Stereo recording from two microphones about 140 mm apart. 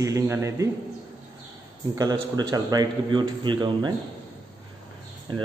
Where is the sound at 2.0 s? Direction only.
30° right (ahead or behind).